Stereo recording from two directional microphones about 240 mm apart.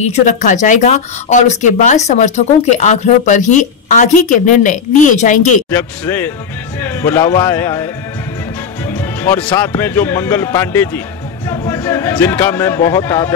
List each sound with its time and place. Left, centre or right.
0.0 s speech: left
5.7 s a man's voice: centre
8.9 s speech: centre